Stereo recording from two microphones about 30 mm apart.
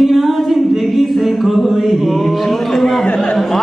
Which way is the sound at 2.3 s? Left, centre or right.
Centre.